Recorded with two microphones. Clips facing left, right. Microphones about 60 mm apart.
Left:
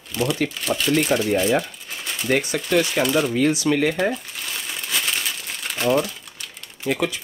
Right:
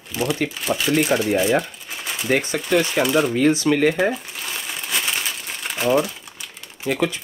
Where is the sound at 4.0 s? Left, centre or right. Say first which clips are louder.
Right 2 dB; centre.